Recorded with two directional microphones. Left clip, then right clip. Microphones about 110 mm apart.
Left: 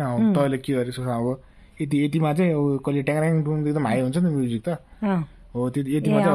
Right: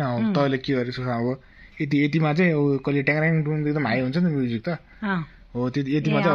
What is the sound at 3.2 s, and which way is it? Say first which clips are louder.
Speech: even; 25° left (ahead or behind).